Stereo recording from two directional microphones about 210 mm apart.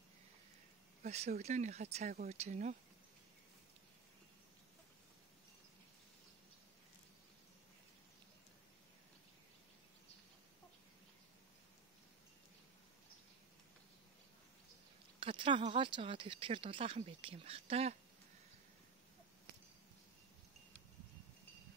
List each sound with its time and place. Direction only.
1.0 s speech: 30° right (ahead or behind)
15.1 s speech: 25° right (ahead or behind)